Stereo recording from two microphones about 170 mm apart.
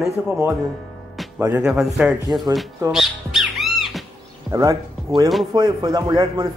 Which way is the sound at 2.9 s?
Centre (ahead or behind).